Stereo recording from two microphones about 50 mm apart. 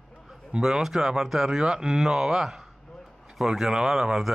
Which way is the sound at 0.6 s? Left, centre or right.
Centre.